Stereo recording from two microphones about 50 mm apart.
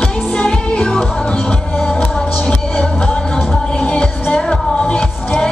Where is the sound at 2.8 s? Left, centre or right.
Centre.